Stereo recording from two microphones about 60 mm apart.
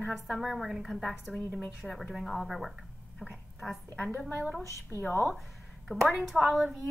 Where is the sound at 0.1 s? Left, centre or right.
Centre.